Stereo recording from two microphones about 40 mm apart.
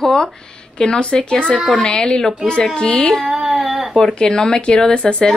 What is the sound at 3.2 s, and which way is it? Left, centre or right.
Child singing, centre.